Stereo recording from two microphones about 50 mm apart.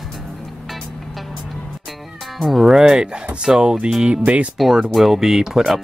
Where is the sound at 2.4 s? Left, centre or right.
Centre.